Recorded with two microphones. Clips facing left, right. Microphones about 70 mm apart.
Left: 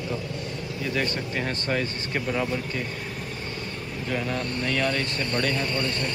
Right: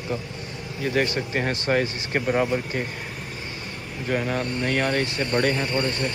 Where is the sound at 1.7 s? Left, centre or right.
Right.